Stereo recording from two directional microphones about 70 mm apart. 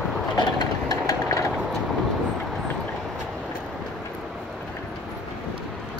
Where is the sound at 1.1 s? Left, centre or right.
Left.